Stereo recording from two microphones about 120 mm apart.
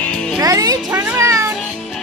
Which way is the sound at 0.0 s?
5° left (ahead or behind).